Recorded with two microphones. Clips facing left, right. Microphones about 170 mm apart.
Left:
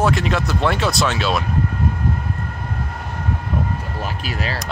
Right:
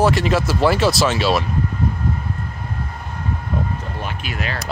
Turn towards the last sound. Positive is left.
turn(degrees=35)  # may be behind; listen again after turning